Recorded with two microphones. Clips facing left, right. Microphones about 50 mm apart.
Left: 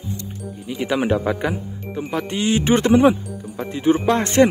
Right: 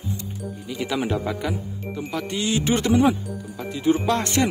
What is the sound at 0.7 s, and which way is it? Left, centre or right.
Speech, centre.